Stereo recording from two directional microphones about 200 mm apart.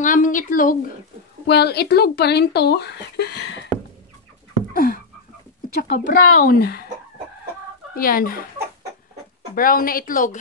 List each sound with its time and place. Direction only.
0.0 s speech: 40° left (ahead or behind)
1.5 s speech: 55° left (ahead or behind)
4.7 s a sound: 45° left (ahead or behind)
5.8 s speech: 50° left (ahead or behind)
7.9 s speech: 45° left (ahead or behind)
9.6 s speech: 45° left (ahead or behind)